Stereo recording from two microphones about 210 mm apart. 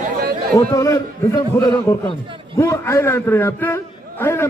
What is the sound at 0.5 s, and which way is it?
A man's voice, 15° left (ahead or behind).